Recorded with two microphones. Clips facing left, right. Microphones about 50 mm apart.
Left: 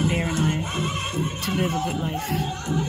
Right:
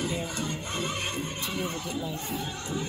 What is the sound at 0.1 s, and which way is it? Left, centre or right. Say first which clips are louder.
Music: left 8 dB; left.